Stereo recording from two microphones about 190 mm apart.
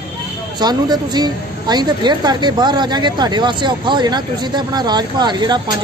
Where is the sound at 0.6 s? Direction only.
20° right (ahead or behind).